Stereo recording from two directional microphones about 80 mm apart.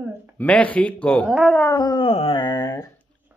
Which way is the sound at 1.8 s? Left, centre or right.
Left.